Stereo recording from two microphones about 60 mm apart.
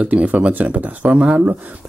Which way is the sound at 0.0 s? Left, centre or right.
Right.